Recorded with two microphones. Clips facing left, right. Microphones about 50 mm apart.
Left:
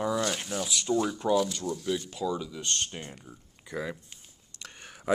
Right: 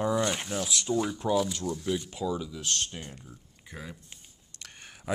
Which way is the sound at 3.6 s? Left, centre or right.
Left.